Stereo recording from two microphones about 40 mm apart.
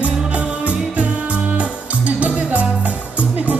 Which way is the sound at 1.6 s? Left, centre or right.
Right.